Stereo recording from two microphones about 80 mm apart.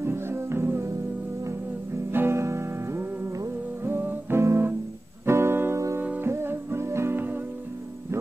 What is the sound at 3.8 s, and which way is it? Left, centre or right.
Music, right.